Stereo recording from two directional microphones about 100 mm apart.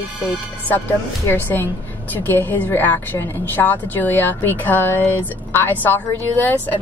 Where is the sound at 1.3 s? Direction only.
20° left (ahead or behind).